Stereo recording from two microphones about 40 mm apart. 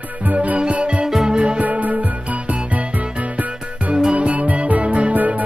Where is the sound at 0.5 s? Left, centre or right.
Right.